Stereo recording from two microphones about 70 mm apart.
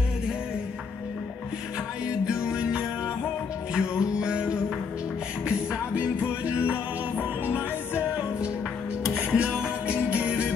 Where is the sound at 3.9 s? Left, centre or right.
Centre.